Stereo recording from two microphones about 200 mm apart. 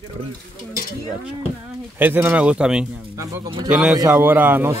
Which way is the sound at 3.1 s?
15° right (ahead or behind).